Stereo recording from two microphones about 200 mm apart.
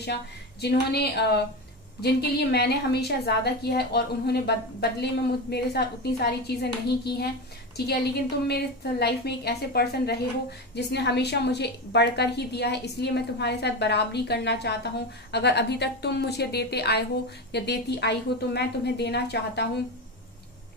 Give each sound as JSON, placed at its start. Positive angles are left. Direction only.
{"t": 0.0, "sound": "a woman's voice", "side_deg": 55}